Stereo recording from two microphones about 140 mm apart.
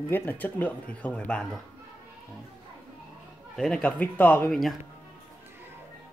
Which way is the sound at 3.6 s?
5° left (ahead or behind).